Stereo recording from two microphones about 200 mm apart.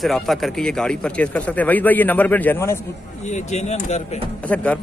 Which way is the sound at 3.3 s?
35° left (ahead or behind).